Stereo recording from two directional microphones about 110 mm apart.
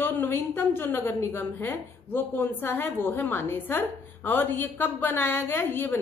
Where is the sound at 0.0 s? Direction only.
20° left (ahead or behind).